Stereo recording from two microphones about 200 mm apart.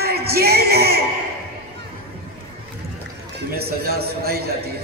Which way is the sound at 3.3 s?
50° right (ahead or behind).